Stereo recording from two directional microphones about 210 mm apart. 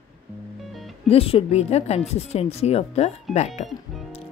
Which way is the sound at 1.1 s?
25° left (ahead or behind).